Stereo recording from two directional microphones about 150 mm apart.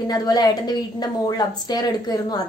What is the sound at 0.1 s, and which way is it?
A woman's voice, 25° left (ahead or behind).